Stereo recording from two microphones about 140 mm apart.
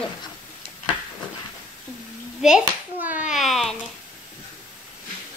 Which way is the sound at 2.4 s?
5° right (ahead or behind).